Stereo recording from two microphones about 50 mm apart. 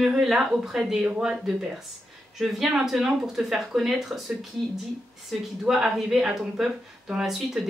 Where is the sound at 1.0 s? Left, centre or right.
Right.